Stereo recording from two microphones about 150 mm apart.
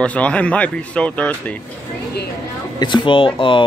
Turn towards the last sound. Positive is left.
turn(degrees=35)  # may be behind; listen again after turning